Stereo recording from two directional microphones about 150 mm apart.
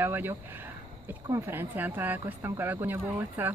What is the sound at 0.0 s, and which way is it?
Speech, 15° right (ahead or behind).